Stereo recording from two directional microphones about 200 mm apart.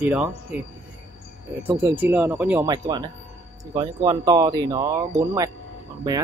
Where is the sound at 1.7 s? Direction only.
10° right (ahead or behind).